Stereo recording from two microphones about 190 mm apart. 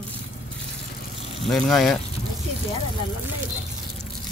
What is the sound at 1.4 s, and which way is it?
Speech, centre (ahead or behind).